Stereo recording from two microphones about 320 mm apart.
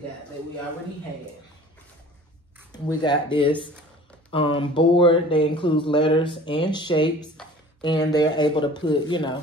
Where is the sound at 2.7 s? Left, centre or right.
Centre.